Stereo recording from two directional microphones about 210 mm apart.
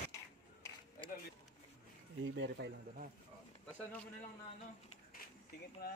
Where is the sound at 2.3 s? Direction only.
60° right (ahead or behind).